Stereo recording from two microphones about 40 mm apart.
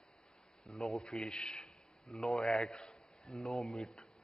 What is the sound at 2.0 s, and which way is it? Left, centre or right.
A man's voice, centre.